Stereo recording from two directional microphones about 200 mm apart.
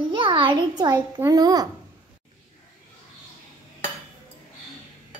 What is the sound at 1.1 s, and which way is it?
Speech, 20° right (ahead or behind).